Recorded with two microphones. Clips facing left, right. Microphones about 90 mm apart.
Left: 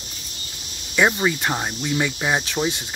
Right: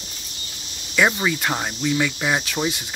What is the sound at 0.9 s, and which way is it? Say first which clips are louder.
Speech: left 1 dB; 15° left (ahead or behind).